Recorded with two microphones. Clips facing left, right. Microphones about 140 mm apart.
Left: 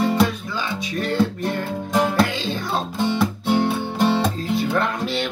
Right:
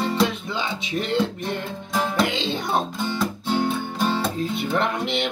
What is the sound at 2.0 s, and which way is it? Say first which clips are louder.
Music: left 4 dB; 10° left (ahead or behind).